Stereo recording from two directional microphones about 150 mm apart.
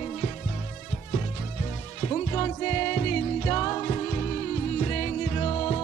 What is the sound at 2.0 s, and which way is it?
Music, 20° left (ahead or behind).